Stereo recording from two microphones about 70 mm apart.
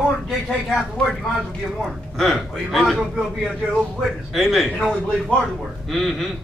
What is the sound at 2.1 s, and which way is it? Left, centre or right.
Speech, centre.